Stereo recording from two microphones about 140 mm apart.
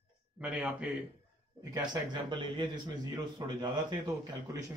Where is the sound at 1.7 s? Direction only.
35° right (ahead or behind).